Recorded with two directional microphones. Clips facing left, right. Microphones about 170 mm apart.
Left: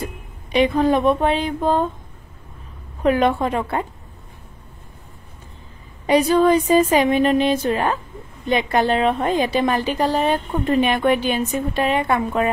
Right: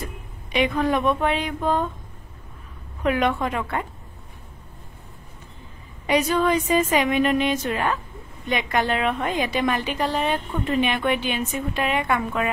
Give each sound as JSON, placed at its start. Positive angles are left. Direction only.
{"t": 0.0, "sound": "speech", "side_deg": 35}
{"t": 3.0, "sound": "a woman's voice", "side_deg": 30}
{"t": 6.0, "sound": "a woman's voice", "side_deg": 35}